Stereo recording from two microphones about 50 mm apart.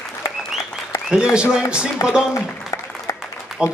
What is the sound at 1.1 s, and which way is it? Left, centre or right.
Speech, centre.